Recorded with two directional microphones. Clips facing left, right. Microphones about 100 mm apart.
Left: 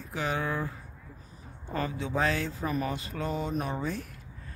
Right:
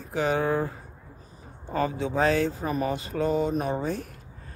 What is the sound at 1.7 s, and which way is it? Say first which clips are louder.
Speech: right 5 dB; 30° right (ahead or behind).